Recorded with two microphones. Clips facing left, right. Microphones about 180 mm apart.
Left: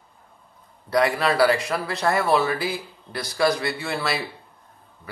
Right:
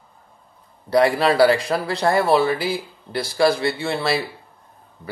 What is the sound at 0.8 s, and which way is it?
Speech, 30° right (ahead or behind).